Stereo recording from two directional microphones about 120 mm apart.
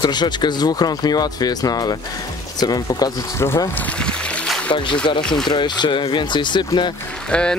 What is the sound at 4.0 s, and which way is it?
Music, 5° left (ahead or behind).